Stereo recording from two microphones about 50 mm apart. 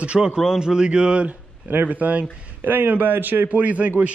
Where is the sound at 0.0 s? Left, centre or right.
Right.